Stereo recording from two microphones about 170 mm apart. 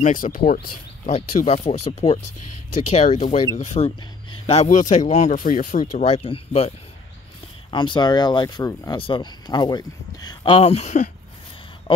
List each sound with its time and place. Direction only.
0.0 s speech: 50° left (ahead or behind)
1.0 s speech: 40° left (ahead or behind)
7.7 s speech: 25° left (ahead or behind)